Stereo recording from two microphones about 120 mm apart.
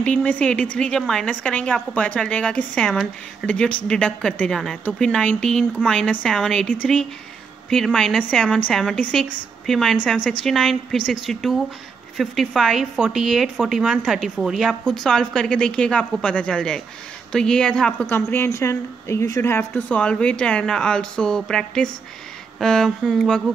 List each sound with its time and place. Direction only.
0.0 s a woman's voice: 10° left (ahead or behind)
18.0 s a woman's voice: 20° left (ahead or behind)
20.0 s a woman's voice: 10° left (ahead or behind)